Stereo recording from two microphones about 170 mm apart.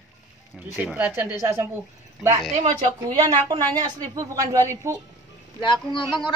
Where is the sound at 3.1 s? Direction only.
25° right (ahead or behind).